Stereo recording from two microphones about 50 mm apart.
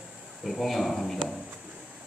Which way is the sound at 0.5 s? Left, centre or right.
Centre.